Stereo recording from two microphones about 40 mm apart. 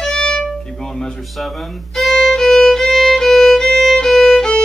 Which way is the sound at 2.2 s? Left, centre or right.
Centre.